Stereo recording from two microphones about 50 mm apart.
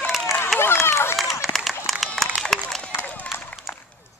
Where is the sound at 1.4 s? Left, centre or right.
Centre.